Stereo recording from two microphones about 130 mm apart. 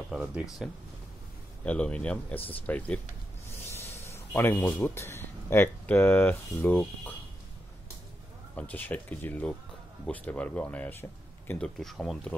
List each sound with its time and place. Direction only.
0.1 s speech: 5° right (ahead or behind); by 3.0 s 10° left (ahead or behind)
3.6 s a sound: 20° left (ahead or behind)
4.4 s speech: 15° left (ahead or behind)
8.5 s speech: 15° left (ahead or behind)
11.6 s speech: 5° left (ahead or behind)